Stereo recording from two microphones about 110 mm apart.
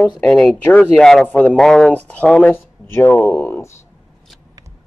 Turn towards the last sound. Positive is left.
turn(degrees=20)  # may be behind; listen again after turning